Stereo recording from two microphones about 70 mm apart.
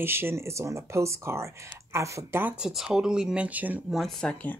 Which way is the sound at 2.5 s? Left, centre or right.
Centre.